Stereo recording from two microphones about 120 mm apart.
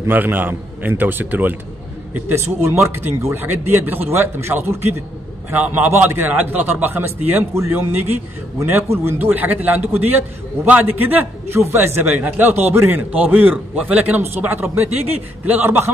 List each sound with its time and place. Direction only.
0.0 s a man's voice: 15° right (ahead or behind)